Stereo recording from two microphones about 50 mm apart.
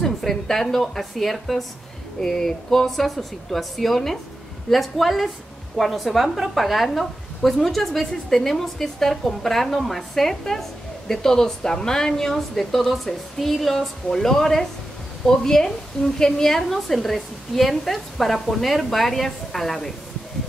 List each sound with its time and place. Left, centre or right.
0.0 s a woman's voice: centre